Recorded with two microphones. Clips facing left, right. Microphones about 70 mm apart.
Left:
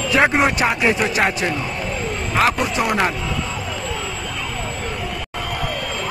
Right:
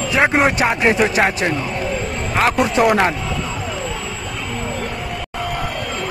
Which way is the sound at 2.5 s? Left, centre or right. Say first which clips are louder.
Right 5 dB; centre.